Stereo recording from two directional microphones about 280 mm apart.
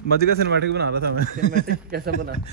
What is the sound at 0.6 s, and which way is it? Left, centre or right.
A man's voice, right.